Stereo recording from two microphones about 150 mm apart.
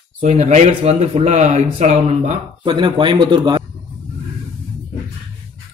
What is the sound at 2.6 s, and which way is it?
Speech, 35° right (ahead or behind).